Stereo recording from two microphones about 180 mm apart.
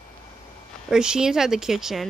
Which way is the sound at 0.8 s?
5° right (ahead or behind).